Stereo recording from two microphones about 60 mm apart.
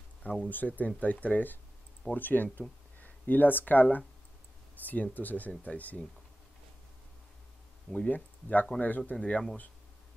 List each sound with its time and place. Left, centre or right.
0.5 s speech: left
7.9 s speech: left
9.1 s speech: centre